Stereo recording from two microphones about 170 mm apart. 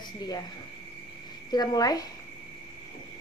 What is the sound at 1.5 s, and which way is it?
Speech, 25° left (ahead or behind).